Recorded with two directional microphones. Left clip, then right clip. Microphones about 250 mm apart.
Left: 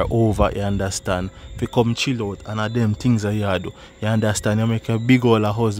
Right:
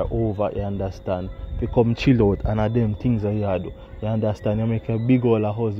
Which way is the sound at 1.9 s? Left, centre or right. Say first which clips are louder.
Right 4 dB; centre.